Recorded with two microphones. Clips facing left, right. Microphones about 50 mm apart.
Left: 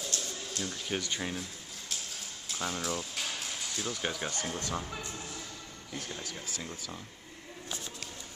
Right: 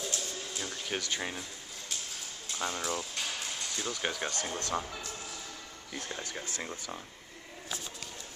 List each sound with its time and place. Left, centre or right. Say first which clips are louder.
0.1 s a sound: even; centre
0.5 s speech: left 2 dB; centre
2.4 s speech: even; centre
6.0 s speech: right 2 dB; right